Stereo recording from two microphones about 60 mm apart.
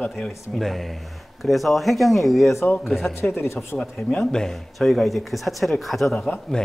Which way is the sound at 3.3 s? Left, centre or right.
Left.